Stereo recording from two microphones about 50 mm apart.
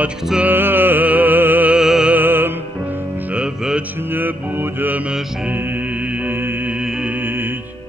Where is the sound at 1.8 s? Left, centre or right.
Centre.